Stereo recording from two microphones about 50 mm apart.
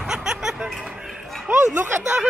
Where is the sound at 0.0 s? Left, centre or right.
Centre.